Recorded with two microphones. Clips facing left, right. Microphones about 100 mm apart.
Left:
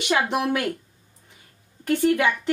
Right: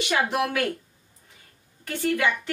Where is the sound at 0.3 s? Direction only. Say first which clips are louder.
Left 1 dB; 20° left (ahead or behind).